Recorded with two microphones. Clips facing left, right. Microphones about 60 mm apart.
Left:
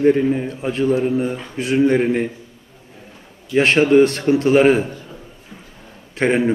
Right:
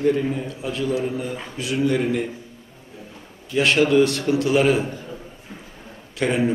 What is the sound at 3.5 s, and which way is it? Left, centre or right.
A man's voice, left.